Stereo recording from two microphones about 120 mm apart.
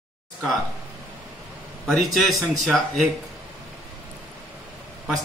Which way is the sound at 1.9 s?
Centre (ahead or behind).